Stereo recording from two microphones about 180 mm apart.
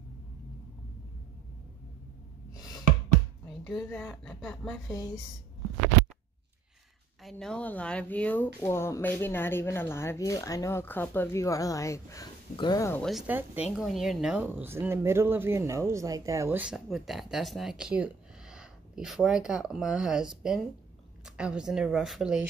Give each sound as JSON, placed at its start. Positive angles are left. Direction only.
{"t": 2.5, "sound": "a sound", "side_deg": 20}
{"t": 3.6, "sound": "speech", "side_deg": 5}
{"t": 7.2, "sound": "speech", "side_deg": 5}
{"t": 13.3, "sound": "a woman's voice", "side_deg": -10}